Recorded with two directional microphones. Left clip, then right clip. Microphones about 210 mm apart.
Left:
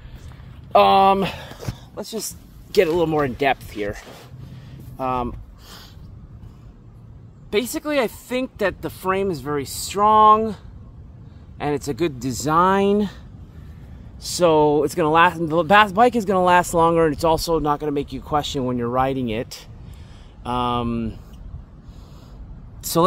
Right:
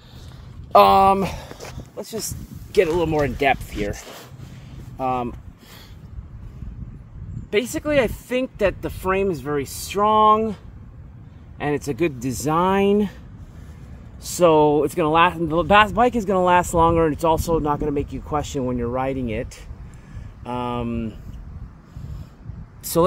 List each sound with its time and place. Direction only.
0.7 s speech: 15° right (ahead or behind)
1.6 s a sound: 15° left (ahead or behind)
2.7 s speech: 20° left (ahead or behind)
3.2 s speech: centre (ahead or behind)
4.9 s speech: 5° right (ahead or behind)
7.5 s speech: 5° right (ahead or behind)
14.2 s speech: 15° right (ahead or behind); by 21.2 s 15° left (ahead or behind)